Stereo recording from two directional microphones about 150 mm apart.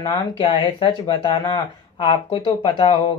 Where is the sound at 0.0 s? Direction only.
25° left (ahead or behind).